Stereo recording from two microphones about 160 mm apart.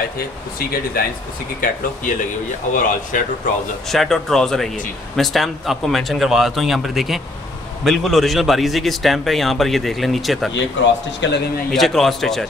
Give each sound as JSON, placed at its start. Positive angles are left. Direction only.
{"t": 0.6, "sound": "a man's voice", "side_deg": 65}
{"t": 1.6, "sound": "speech", "side_deg": 55}
{"t": 3.9, "sound": "a man's voice", "side_deg": 0}
{"t": 11.2, "sound": "a man's voice", "side_deg": 90}
{"t": 11.7, "sound": "a man's voice", "side_deg": 0}